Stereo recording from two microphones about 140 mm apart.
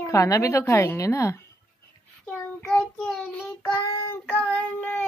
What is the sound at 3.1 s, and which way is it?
Child singing, centre (ahead or behind).